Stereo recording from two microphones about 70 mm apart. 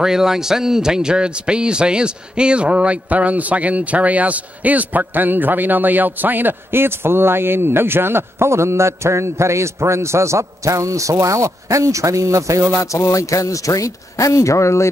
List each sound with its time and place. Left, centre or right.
0.0 s a man's voice: centre; by 12.6 s right
12.8 s speech: left